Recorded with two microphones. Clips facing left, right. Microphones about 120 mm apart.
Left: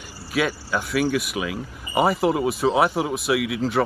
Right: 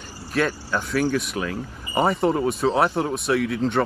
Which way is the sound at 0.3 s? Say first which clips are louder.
Even; 10° left (ahead or behind).